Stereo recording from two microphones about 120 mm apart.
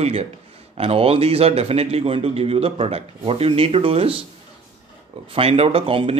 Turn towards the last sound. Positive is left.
turn(degrees=-50)  # may be behind; listen again after turning